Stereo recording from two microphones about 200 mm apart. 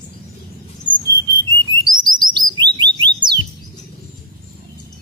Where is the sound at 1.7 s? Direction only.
20° right (ahead or behind).